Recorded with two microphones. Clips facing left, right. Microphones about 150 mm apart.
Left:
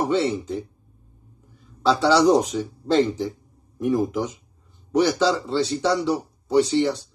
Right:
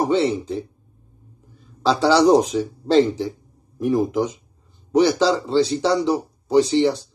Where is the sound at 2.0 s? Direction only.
15° right (ahead or behind).